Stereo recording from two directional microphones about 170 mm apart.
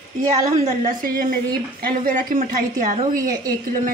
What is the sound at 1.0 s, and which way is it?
A man's voice, 60° right (ahead or behind).